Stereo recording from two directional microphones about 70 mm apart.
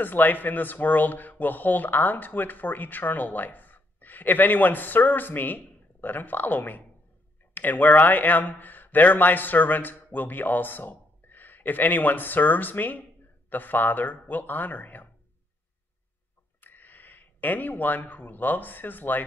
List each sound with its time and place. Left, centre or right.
0.0 s speech: left
16.6 s speech: left